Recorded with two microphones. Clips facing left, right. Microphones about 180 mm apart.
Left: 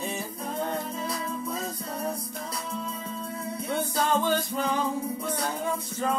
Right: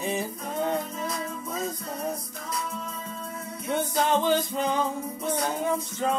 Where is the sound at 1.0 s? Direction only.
30° left (ahead or behind).